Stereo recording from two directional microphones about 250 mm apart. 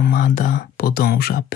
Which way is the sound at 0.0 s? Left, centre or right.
Left.